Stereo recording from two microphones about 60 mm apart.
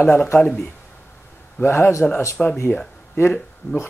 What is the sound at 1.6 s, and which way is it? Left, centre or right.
Speech, left.